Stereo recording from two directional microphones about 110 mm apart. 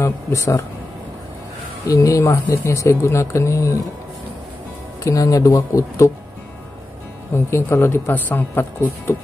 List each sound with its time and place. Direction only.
0.0 s speech: 25° left (ahead or behind)
1.9 s speech: 30° left (ahead or behind)
5.0 s speech: 30° left (ahead or behind)
7.3 s speech: 25° left (ahead or behind)